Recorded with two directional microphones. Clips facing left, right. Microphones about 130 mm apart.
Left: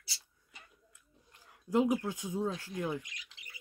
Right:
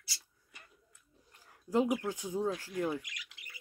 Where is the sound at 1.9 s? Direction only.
20° left (ahead or behind).